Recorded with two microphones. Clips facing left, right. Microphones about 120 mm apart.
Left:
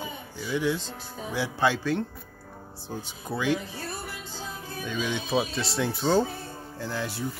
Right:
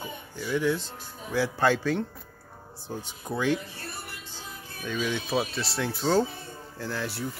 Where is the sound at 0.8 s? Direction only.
90° left.